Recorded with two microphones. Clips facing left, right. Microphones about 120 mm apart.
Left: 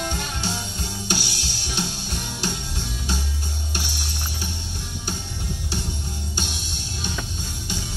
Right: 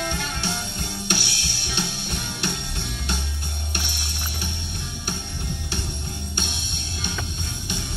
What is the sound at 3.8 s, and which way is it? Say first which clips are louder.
Music: even; 60° right (ahead or behind).